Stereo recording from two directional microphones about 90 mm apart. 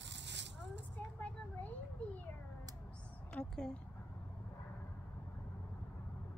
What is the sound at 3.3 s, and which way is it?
Speech, 10° left (ahead or behind).